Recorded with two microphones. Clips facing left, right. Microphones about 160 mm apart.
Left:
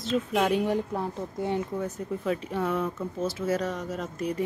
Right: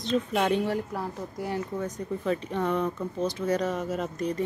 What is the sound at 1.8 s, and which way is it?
Speech, 5° left (ahead or behind).